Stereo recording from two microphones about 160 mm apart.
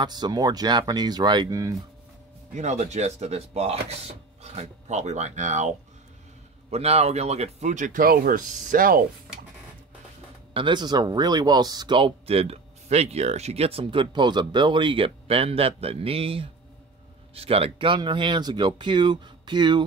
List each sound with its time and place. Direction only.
0.0 s speech: 25° right (ahead or behind)
2.5 s speech: 45° right (ahead or behind)
10.5 s speech: 30° right (ahead or behind)